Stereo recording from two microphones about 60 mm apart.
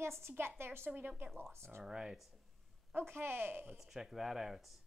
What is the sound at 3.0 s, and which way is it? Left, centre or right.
Speech, right.